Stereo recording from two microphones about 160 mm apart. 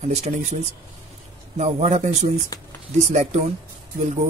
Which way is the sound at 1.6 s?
45° right (ahead or behind).